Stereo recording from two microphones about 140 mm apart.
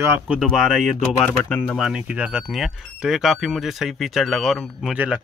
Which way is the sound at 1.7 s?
5° right (ahead or behind).